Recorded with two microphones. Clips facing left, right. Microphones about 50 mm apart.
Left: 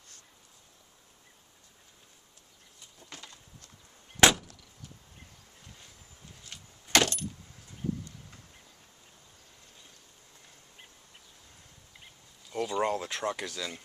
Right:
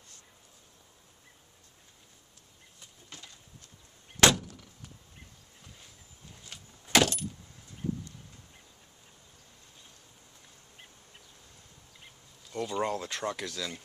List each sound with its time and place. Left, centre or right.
4.2 s vehicle: centre
6.5 s keys jangling: centre
12.4 s speech: centre